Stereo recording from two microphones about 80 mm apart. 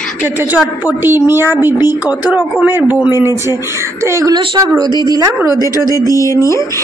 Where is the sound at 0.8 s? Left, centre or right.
Right.